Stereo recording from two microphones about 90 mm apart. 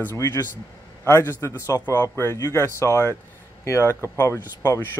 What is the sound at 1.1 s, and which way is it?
Speech, 30° left (ahead or behind).